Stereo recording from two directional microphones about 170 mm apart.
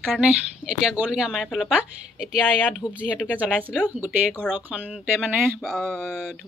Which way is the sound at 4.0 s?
10° right (ahead or behind).